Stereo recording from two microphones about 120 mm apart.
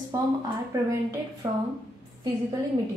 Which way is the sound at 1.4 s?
30° right (ahead or behind).